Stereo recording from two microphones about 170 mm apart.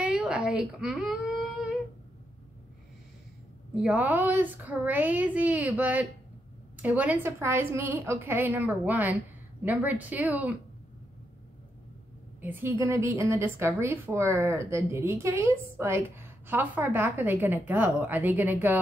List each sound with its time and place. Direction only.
0.0 s a sound: 5° right (ahead or behind)
3.8 s a woman's voice: 10° right (ahead or behind)
12.4 s a woman's voice: 15° right (ahead or behind)